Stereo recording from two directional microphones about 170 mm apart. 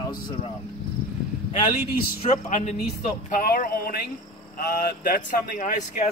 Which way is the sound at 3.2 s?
60° left (ahead or behind).